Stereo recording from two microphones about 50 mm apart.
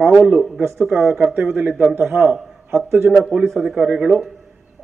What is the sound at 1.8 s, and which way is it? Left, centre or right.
Speech, right.